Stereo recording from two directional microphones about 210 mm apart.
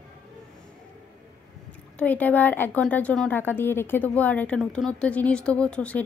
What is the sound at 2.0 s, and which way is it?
A woman's voice, 5° left (ahead or behind).